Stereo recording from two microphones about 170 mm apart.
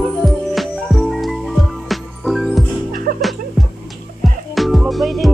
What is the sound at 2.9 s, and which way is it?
Music, 55° right (ahead or behind).